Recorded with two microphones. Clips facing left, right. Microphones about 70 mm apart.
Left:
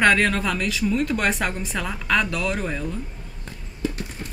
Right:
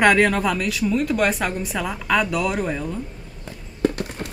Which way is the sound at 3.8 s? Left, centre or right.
Right.